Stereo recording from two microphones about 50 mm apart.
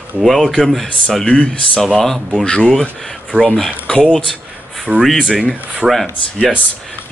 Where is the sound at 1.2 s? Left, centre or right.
Left.